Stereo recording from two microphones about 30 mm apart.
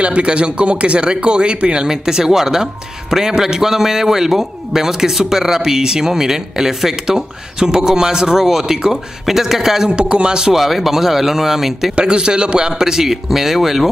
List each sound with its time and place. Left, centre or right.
0.0 s speech: right
1.9 s speech: right
9.8 s speech: right
10.4 s speech: centre
11.9 s speech: right; by 13.8 s centre